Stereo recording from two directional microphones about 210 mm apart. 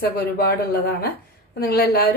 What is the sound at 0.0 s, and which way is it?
A woman's voice, 45° left (ahead or behind).